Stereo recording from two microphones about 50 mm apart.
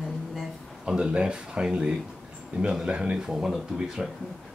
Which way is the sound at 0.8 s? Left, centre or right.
Centre.